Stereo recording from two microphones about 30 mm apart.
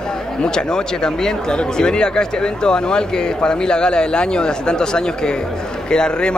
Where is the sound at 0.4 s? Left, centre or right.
Left.